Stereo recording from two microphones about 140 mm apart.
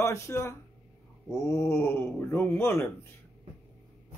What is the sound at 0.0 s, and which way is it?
Speech, 20° left (ahead or behind).